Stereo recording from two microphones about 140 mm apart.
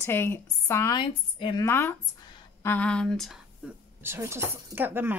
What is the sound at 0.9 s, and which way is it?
Speech, 35° left (ahead or behind).